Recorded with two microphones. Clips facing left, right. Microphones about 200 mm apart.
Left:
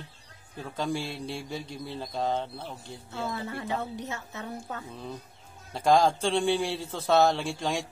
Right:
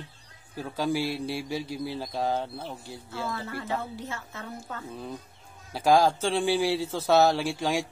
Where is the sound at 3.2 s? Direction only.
20° left (ahead or behind).